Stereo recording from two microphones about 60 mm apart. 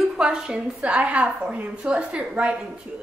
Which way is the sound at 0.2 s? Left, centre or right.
Centre.